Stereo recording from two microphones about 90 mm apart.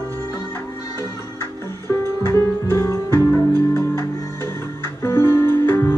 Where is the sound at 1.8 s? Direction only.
30° left (ahead or behind).